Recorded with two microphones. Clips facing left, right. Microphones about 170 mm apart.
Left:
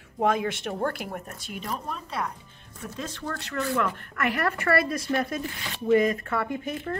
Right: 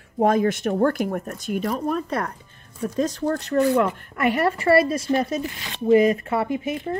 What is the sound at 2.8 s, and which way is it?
Speech, 40° right (ahead or behind).